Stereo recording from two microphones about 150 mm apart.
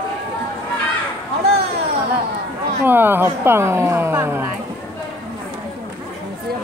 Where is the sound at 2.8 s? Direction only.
15° right (ahead or behind).